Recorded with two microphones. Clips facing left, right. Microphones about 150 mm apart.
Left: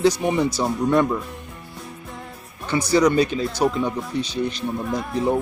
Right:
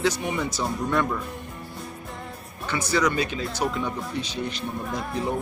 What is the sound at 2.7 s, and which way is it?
Speech, 35° left (ahead or behind).